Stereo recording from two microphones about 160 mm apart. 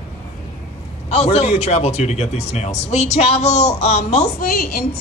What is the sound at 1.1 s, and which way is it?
A man's voice, 40° left (ahead or behind).